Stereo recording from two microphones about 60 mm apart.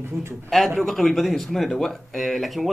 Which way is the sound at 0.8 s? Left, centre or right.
Centre.